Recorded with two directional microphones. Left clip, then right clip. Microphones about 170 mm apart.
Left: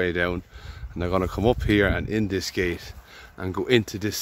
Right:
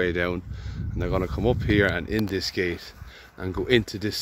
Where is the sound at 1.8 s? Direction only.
10° left (ahead or behind).